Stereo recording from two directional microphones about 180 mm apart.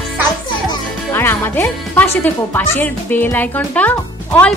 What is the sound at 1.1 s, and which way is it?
Speech, 10° left (ahead or behind).